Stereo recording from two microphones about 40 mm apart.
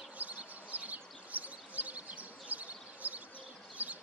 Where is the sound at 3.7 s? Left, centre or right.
Right.